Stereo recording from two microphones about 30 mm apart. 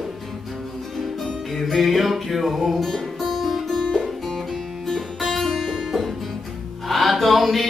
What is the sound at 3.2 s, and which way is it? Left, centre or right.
Music, centre.